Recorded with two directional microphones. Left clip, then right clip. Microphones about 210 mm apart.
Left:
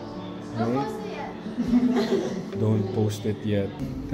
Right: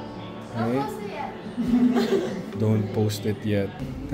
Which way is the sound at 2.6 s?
5° right (ahead or behind).